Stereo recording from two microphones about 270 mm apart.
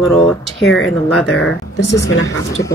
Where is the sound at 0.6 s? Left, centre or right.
Left.